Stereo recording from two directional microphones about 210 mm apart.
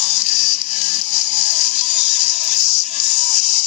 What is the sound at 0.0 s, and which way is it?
Music, 35° left (ahead or behind).